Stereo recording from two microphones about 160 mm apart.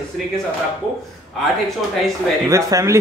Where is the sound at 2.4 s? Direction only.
20° right (ahead or behind).